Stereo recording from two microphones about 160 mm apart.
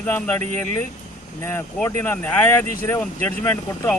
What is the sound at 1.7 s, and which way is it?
Speech, 10° left (ahead or behind).